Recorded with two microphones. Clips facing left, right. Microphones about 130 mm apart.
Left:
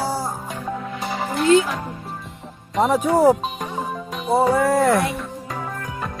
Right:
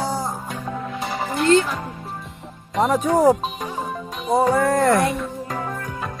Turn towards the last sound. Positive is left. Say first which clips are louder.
# right 1 dB
turn(degrees=0)  # may be behind; listen again after turning